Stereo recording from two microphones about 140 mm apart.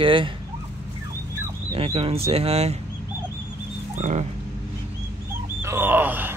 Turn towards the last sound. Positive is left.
turn(degrees=-15)  # may be behind; listen again after turning